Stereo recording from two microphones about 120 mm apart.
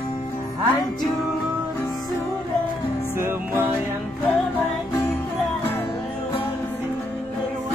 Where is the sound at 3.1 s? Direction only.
20° right (ahead or behind).